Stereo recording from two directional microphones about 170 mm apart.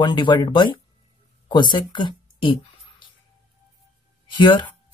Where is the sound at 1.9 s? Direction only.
30° left (ahead or behind).